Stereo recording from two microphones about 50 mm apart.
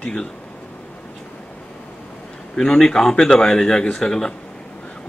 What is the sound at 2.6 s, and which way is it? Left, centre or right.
Speech, centre.